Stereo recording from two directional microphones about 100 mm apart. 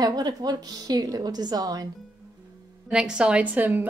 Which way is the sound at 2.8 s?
10° right (ahead or behind).